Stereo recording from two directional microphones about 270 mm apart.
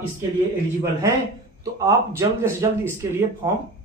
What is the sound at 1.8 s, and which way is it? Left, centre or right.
A man's voice, centre.